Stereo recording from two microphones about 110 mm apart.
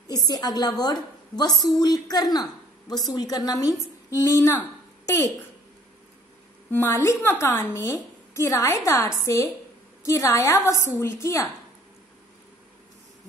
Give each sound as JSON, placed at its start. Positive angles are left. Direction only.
{"t": 0.3, "sound": "a woman's voice", "side_deg": 35}
{"t": 4.1, "sound": "a woman's voice", "side_deg": 25}
{"t": 6.7, "sound": "a woman's voice", "side_deg": 25}